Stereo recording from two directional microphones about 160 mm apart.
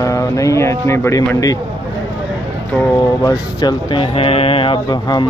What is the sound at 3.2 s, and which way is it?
Speech, 25° left (ahead or behind).